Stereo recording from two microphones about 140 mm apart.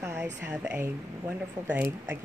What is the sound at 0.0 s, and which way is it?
A woman's voice, 20° right (ahead or behind).